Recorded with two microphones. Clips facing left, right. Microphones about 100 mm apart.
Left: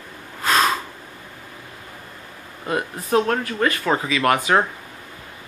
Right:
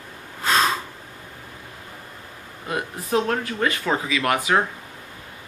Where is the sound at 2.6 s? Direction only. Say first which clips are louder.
Left 3 dB; 10° right (ahead or behind).